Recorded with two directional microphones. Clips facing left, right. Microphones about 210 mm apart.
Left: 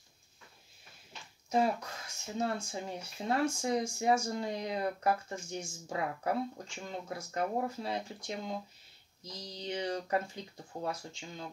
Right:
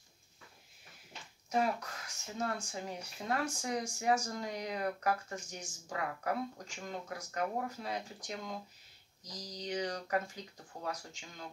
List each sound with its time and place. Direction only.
1.5 s speech: 25° left (ahead or behind)